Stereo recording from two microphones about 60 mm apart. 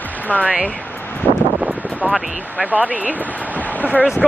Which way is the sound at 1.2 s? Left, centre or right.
Left.